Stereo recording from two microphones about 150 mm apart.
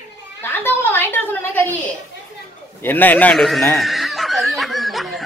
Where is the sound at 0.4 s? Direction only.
15° left (ahead or behind).